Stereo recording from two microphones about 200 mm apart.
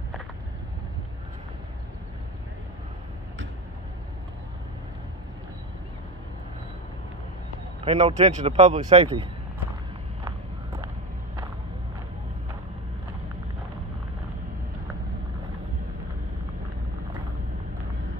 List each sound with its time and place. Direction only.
7.8 s speech: 30° right (ahead or behind)